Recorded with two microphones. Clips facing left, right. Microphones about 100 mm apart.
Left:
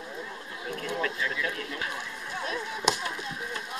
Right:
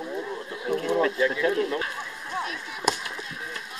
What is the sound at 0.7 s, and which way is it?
Speech, 30° right (ahead or behind).